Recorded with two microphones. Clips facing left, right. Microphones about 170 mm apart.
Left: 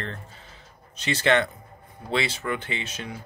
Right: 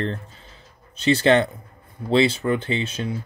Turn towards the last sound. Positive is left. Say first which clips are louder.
# right 8 dB
turn(degrees=-30)  # may be behind; listen again after turning